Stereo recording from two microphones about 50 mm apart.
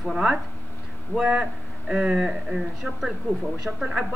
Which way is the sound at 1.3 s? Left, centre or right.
Right.